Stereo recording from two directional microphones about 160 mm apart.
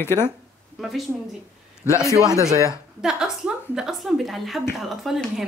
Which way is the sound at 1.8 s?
20° left (ahead or behind).